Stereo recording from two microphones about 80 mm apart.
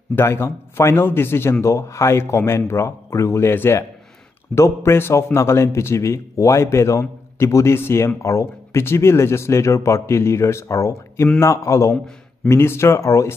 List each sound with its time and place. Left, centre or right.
0.1 s a man's voice: left